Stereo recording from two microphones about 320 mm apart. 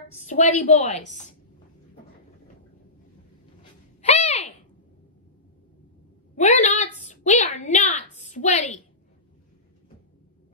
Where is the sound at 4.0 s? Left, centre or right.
Centre.